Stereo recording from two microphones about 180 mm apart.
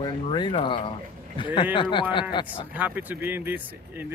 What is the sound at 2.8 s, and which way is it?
Speech, 10° right (ahead or behind).